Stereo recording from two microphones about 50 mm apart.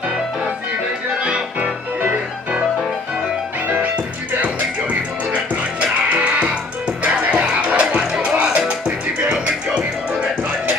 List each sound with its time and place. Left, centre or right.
1.2 s music: right
3.7 s music: right